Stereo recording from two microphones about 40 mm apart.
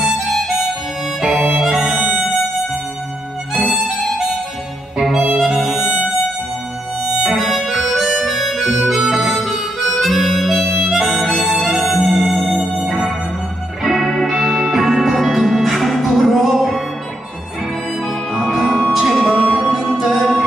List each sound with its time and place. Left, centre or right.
0.0 s harmonica: centre
1.3 s music: centre
1.6 s music: centre
2.0 s music: right
3.6 s music: centre
7.3 s harmonica: centre
10.6 s harmonica: centre
10.9 s harmonica: centre
13.8 s music: centre
18.3 s music: centre
19.2 s music: centre
19.5 s music: centre